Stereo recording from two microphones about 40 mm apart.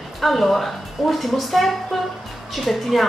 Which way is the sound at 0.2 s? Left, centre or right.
Centre.